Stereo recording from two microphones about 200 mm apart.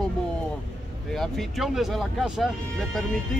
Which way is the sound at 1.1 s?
Centre (ahead or behind).